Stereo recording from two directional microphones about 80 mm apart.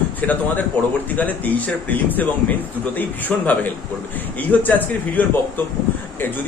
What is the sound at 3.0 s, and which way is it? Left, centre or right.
A man's voice, left.